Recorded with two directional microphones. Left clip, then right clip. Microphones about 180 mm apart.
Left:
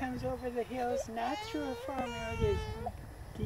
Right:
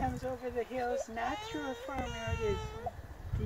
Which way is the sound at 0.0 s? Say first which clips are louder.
Right 1 dB; 50° left (ahead or behind).